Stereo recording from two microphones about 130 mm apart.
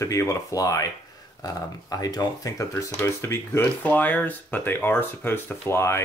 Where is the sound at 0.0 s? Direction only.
25° left (ahead or behind).